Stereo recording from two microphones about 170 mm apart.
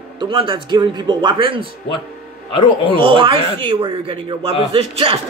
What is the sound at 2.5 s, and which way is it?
Speech, 30° left (ahead or behind).